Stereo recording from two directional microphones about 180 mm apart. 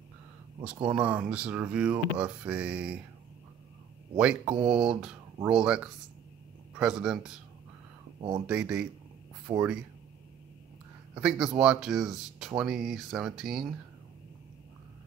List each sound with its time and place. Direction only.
0.8 s speech: 10° right (ahead or behind)
4.2 s speech: 5° right (ahead or behind)
8.5 s speech: 5° right (ahead or behind)
9.5 s speech: 30° right (ahead or behind)
11.1 s speech: 5° right (ahead or behind)